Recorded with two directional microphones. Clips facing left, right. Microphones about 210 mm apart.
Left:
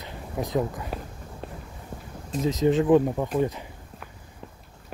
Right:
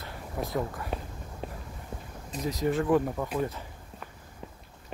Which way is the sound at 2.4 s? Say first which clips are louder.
Left 6 dB; 20° left (ahead or behind).